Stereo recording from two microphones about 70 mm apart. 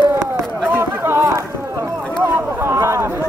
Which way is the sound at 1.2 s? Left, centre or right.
Right.